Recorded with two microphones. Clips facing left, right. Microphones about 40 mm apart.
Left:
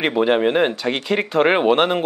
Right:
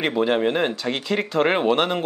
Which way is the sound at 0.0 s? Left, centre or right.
Centre.